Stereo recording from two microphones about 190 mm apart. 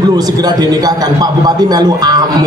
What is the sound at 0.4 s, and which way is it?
A man's voice, 20° right (ahead or behind).